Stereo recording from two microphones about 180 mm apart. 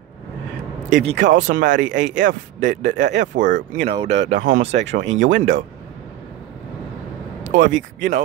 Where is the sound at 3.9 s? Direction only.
35° right (ahead or behind).